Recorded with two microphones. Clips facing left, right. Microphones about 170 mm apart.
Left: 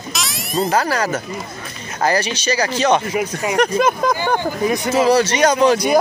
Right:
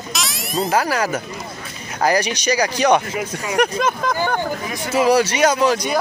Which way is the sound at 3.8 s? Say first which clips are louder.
Left 3 dB; 15° left (ahead or behind).